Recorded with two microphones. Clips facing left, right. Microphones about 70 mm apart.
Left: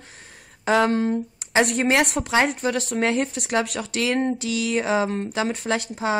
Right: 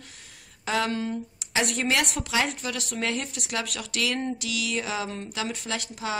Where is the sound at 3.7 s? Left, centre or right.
Left.